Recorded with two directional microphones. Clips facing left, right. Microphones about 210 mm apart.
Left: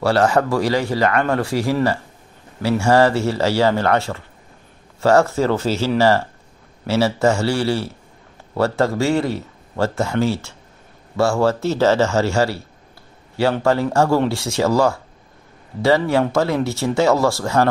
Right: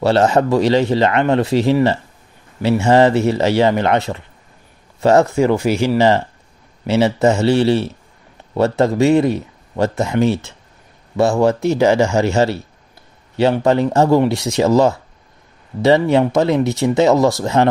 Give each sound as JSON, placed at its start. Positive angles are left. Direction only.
{"t": 0.0, "sound": "speech", "side_deg": -20}